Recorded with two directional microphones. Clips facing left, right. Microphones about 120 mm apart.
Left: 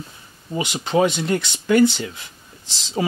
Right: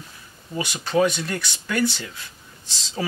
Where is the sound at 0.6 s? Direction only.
20° left (ahead or behind).